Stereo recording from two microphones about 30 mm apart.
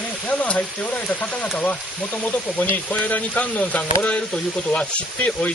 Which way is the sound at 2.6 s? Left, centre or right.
Left.